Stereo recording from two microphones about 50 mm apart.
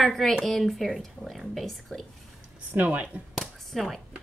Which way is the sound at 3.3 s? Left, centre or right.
Centre.